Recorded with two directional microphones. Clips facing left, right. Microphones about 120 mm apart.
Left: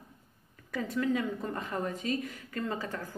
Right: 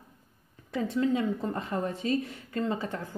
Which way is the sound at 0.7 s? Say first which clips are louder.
Right 3 dB; 25° right (ahead or behind).